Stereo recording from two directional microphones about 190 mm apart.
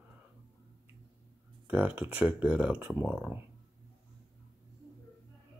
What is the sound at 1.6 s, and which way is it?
Speech, 10° right (ahead or behind).